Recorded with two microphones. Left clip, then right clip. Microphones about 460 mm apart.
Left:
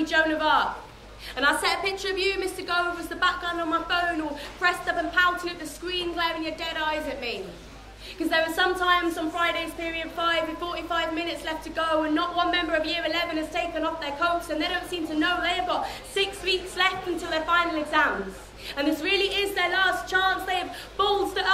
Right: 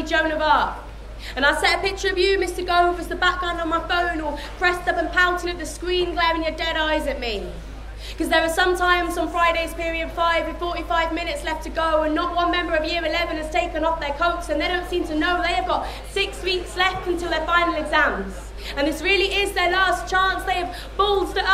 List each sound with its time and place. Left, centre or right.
0.0 s a woman's voice: right
8.3 s a woman's voice: right